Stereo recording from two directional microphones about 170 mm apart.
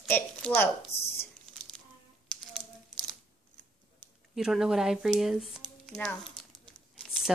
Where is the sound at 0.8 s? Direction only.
35° left (ahead or behind).